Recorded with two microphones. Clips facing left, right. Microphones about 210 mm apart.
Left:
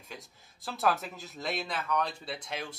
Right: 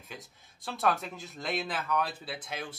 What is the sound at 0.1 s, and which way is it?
Speech, centre (ahead or behind).